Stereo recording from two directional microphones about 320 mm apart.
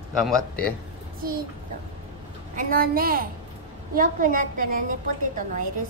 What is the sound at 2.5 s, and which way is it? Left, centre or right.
A woman's voice, right.